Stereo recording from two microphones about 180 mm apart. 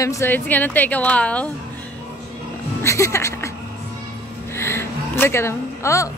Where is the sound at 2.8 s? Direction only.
15° left (ahead or behind).